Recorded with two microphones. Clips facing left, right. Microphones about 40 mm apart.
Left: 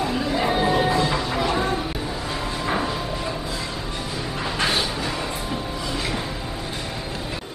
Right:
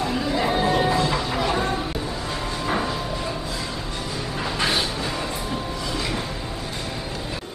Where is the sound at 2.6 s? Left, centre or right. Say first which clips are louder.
Even; centre.